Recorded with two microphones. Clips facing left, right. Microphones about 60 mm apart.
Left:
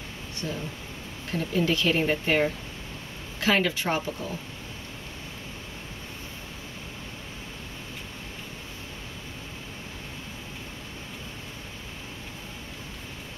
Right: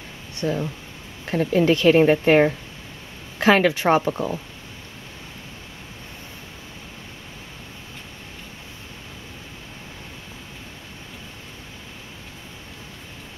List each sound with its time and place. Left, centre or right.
0.4 s speech: right